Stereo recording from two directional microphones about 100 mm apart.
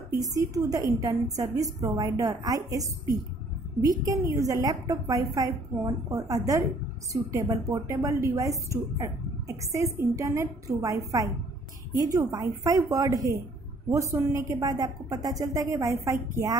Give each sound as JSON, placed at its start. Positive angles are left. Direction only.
{"t": 0.2, "sound": "a woman's voice", "side_deg": -35}